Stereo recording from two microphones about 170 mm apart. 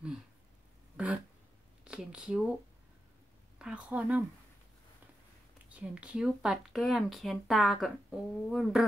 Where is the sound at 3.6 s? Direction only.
5° right (ahead or behind).